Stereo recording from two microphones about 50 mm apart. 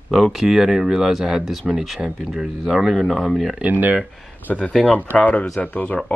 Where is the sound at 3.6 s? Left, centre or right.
Right.